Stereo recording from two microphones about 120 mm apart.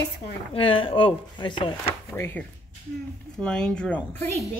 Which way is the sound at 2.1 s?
15° left (ahead or behind).